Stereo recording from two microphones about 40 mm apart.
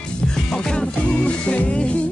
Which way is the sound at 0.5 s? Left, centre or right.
Centre.